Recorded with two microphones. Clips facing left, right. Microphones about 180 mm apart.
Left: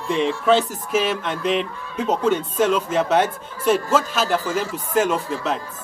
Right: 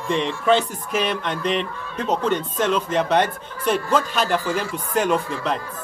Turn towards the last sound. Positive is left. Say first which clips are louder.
# right 1 dB
turn(degrees=5)  # may be behind; listen again after turning